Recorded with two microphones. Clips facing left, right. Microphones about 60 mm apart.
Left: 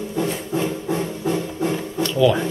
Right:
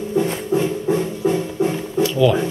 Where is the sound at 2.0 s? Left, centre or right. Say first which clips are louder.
Right 2 dB; centre.